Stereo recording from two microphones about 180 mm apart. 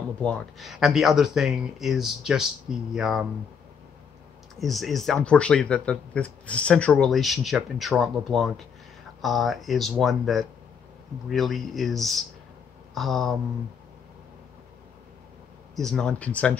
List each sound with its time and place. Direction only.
0.2 s speech: centre (ahead or behind)
4.6 s speech: centre (ahead or behind)
15.7 s speech: 5° left (ahead or behind)